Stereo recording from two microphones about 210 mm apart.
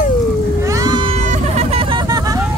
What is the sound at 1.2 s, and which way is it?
Vehicle, 35° right (ahead or behind).